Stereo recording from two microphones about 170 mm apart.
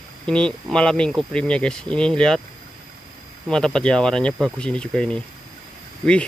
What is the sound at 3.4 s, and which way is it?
Speech, 5° left (ahead or behind).